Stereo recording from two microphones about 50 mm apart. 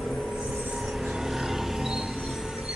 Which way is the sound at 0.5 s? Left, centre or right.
Right.